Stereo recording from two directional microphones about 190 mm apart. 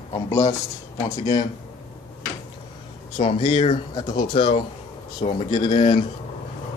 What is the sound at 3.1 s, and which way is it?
Speech, 30° left (ahead or behind).